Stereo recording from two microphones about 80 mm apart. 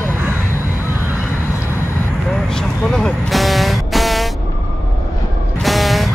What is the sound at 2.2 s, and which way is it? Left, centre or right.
Vehicle, centre.